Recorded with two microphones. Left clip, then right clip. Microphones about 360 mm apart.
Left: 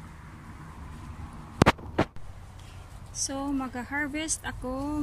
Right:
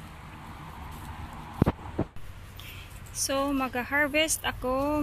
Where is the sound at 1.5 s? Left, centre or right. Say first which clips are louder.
Left 7 dB; left.